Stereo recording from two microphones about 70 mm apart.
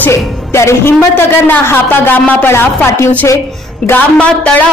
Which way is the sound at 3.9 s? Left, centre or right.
Centre.